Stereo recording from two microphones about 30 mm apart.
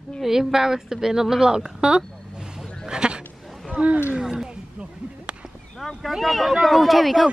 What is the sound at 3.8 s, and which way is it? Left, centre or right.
Speech, right.